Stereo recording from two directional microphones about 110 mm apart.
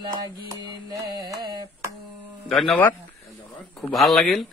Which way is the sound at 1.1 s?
35° right (ahead or behind).